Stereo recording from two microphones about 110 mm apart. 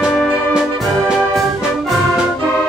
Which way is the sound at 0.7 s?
Centre (ahead or behind).